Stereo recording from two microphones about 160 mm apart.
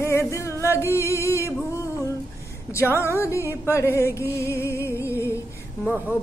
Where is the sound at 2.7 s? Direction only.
15° left (ahead or behind).